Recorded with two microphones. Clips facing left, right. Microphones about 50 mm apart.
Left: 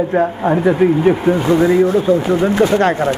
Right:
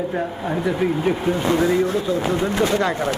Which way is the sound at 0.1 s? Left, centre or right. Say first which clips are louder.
Left 9 dB; left.